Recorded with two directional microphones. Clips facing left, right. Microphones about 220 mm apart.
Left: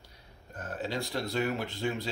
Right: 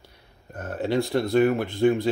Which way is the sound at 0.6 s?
60° right (ahead or behind).